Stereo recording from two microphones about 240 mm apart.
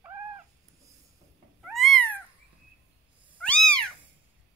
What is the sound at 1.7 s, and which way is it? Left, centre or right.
Cat, centre.